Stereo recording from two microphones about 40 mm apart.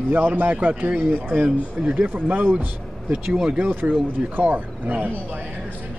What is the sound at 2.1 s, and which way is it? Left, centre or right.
Speech, right.